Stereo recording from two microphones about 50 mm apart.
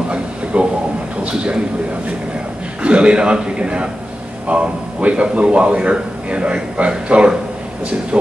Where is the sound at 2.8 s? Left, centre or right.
Right.